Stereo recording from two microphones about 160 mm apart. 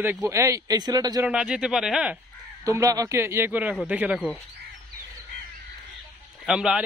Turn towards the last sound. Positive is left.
turn(degrees=-5)  # may be behind; listen again after turning